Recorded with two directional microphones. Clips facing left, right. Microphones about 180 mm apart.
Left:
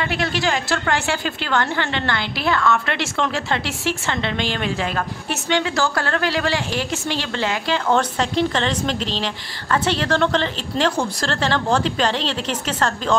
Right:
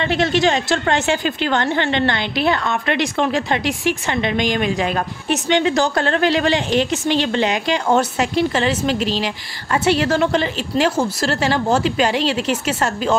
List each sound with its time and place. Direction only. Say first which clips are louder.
0.0 s a woman's voice: right 5 dB; 25° right (ahead or behind)